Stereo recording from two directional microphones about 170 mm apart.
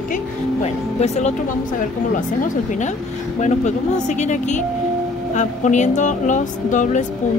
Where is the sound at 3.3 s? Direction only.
45° left (ahead or behind).